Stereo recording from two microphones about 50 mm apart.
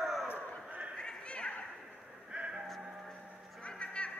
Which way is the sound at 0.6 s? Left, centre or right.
Right.